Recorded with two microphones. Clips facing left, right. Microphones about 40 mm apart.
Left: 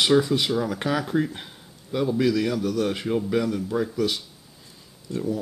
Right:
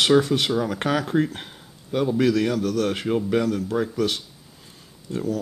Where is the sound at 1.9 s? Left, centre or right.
Right.